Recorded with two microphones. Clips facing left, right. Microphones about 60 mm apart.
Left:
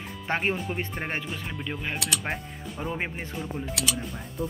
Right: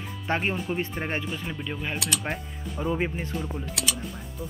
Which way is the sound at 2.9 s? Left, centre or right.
Left.